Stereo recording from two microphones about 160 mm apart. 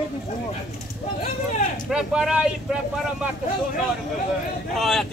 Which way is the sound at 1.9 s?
5° right (ahead or behind).